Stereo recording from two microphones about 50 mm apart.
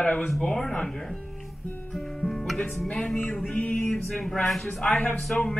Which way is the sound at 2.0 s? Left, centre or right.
Centre.